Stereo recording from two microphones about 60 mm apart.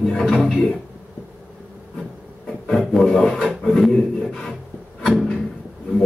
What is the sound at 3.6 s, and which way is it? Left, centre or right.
Speech, centre.